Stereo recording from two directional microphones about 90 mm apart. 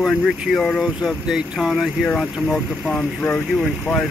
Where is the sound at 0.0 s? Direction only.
Centre (ahead or behind).